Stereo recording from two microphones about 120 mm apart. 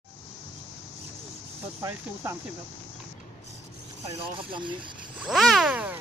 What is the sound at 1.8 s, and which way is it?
Speech, 25° right (ahead or behind).